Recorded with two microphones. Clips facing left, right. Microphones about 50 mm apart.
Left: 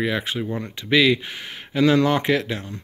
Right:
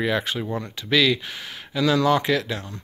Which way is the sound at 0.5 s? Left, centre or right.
Left.